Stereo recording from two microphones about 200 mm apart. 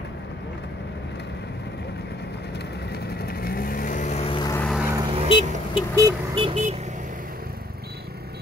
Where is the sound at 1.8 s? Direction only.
55° left (ahead or behind); by 4.5 s 25° left (ahead or behind).